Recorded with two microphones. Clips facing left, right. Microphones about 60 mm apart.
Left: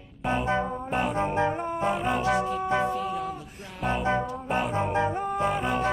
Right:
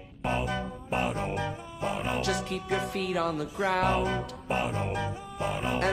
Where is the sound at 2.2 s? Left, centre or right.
Right.